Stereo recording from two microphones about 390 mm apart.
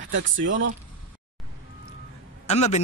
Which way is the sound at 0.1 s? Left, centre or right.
Right.